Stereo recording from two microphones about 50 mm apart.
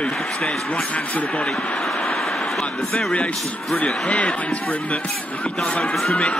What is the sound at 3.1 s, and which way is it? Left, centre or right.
Speech, centre.